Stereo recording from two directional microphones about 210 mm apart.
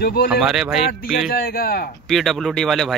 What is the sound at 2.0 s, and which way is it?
Speech, centre (ahead or behind).